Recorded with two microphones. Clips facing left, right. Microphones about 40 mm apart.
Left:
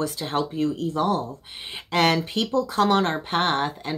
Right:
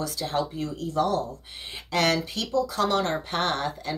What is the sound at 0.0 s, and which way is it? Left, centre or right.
Speech, left.